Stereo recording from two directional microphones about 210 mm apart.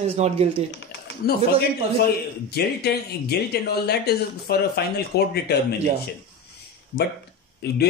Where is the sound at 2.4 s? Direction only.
50° left (ahead or behind).